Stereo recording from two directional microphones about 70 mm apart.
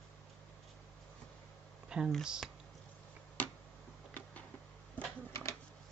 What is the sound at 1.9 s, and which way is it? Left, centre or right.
Speech, centre.